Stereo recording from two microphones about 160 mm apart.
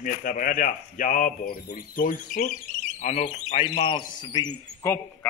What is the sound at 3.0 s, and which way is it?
Speech, 40° left (ahead or behind).